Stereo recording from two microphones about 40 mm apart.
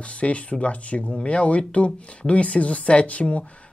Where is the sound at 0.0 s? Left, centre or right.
Left.